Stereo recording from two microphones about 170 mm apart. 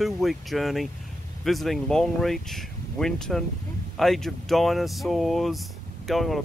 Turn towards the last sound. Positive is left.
turn(degrees=0)  # may be behind; listen again after turning